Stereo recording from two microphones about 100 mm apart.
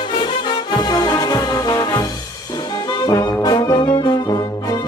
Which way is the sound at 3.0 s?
40° left (ahead or behind).